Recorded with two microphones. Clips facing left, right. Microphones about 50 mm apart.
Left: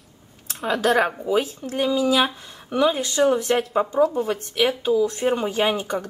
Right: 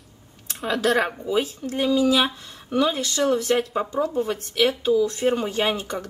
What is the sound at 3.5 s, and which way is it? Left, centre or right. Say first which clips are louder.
Speech: left 1 dB; centre.